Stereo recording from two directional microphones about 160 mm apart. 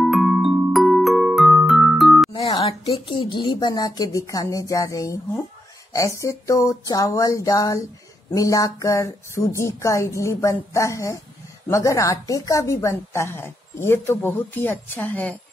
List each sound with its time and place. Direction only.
0.0 s music: centre (ahead or behind)
2.3 s a woman's voice: 35° left (ahead or behind); by 15.3 s 10° left (ahead or behind)